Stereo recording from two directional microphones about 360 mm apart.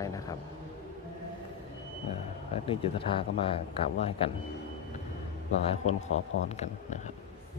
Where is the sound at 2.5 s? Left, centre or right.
Centre.